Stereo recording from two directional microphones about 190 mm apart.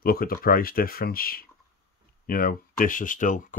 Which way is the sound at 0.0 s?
50° left (ahead or behind).